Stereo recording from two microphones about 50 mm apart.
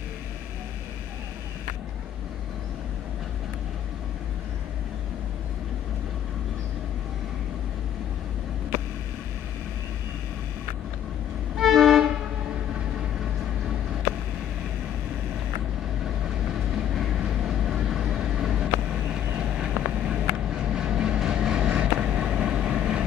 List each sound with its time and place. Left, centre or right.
11.5 s train: centre
16.7 s vehicle: centre